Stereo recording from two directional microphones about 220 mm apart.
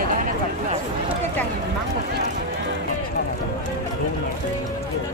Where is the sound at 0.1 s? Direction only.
35° right (ahead or behind).